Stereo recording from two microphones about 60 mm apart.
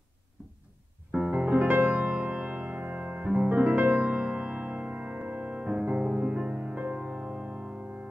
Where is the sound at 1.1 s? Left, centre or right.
Centre.